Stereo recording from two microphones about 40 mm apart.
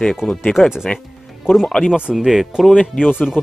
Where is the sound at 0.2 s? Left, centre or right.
Left.